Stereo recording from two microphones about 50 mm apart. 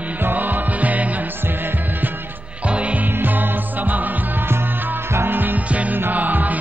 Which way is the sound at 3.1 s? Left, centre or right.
Right.